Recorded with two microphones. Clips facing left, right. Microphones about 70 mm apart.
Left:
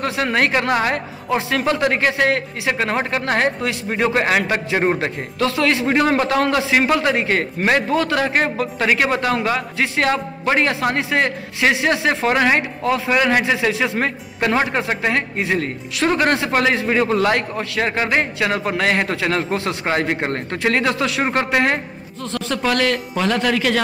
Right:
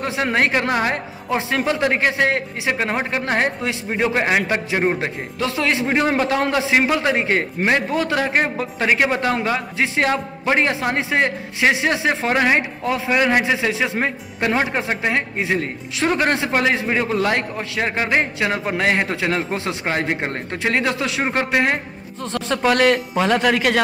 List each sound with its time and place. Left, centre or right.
0.0 s a man's voice: centre